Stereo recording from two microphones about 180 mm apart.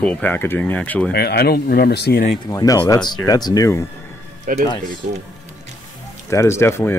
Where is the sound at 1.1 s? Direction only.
65° left (ahead or behind).